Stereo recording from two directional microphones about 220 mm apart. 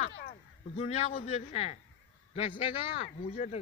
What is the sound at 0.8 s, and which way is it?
A man's voice, 30° left (ahead or behind).